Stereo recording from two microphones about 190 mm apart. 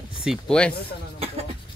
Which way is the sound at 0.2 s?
Centre (ahead or behind).